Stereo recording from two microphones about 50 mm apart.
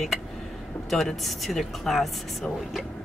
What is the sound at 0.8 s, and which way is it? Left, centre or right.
Speech, centre.